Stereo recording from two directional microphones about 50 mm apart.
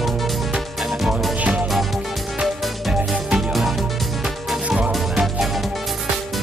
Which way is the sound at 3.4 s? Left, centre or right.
Centre.